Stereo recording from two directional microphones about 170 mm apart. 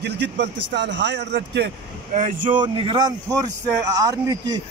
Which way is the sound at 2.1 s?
50° right (ahead or behind).